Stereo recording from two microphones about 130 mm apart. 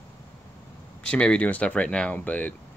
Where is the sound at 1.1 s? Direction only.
10° left (ahead or behind).